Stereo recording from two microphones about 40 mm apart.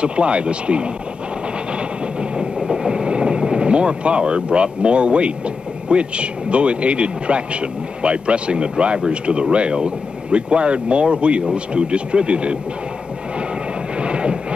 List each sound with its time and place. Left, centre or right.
0.0 s speech: right
2.1 s vehicle: centre
5.9 s speech: right
13.9 s a sound: right